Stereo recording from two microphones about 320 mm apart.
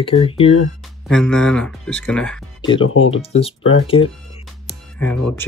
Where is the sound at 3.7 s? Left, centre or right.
Centre.